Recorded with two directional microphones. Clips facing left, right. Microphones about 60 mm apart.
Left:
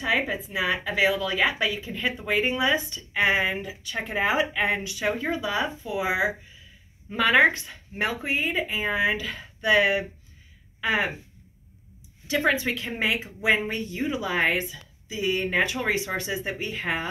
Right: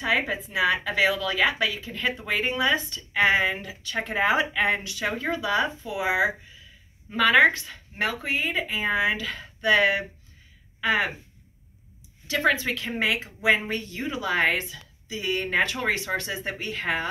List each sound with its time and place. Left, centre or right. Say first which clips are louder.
0.0 s speech: even; centre
7.2 s a woman's voice: right 1 dB; left
12.4 s speech: right 2 dB; left